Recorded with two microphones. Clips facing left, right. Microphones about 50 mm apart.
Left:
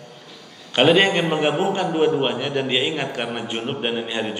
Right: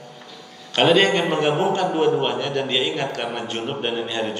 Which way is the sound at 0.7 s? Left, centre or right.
Centre.